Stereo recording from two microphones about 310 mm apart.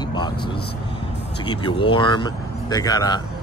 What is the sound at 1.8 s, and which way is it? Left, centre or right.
Speech, centre.